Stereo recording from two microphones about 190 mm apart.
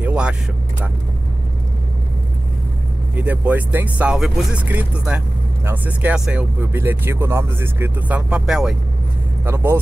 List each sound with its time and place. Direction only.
0.0 s vehicle: 5° right (ahead or behind)
3.2 s speech: 10° right (ahead or behind)